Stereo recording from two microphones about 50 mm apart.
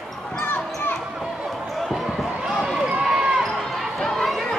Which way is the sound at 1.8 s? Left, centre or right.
Centre.